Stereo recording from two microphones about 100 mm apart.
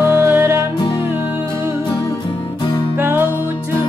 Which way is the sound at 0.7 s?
50° left (ahead or behind).